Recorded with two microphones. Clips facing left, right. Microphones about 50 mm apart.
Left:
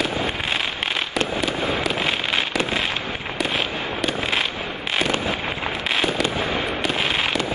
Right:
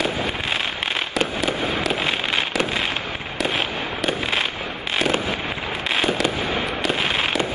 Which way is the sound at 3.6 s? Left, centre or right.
Right.